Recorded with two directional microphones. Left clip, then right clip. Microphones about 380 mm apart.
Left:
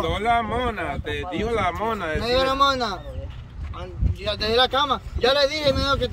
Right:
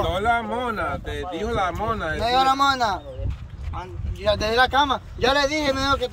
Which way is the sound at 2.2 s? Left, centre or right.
Centre.